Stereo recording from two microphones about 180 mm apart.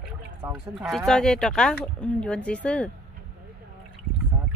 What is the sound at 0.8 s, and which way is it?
Speech, centre (ahead or behind).